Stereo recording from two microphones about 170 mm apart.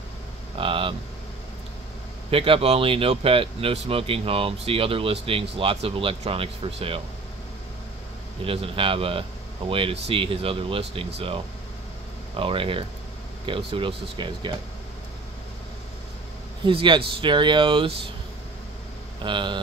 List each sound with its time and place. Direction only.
0.6 s a sound: 30° right (ahead or behind)
2.3 s speech: 30° right (ahead or behind)
8.5 s speech: 30° right (ahead or behind)
16.6 s speech: 30° right (ahead or behind)
19.2 s speech: 30° right (ahead or behind)